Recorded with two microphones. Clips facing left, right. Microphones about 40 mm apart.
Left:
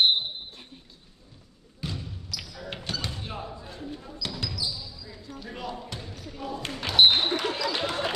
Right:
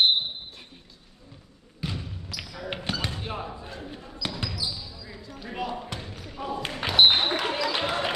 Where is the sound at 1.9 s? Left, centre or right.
Right.